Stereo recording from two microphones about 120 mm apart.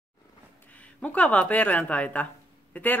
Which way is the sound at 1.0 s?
10° left (ahead or behind).